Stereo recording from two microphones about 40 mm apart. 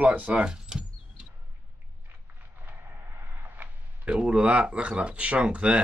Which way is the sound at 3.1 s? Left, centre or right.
Right.